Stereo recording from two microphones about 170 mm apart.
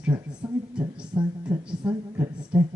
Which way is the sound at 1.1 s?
20° right (ahead or behind).